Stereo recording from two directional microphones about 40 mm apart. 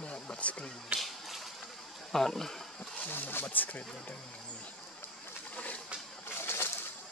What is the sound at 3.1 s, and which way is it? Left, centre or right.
Speech, left.